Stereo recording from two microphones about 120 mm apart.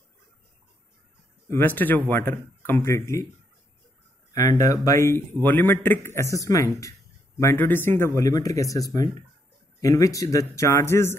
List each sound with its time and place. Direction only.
1.5 s a man's voice: 15° left (ahead or behind)
4.3 s a man's voice: 25° left (ahead or behind)